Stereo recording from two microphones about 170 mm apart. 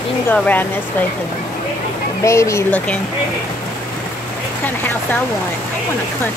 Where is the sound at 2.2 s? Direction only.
15° left (ahead or behind).